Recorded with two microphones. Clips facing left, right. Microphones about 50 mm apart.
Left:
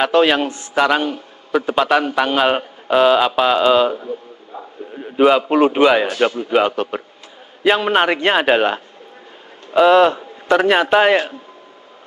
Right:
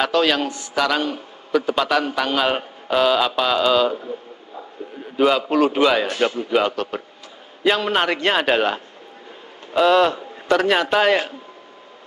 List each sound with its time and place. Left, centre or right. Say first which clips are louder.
0.1 s a man's voice: left 4 dB; left
4.9 s a man's voice: left 4 dB; centre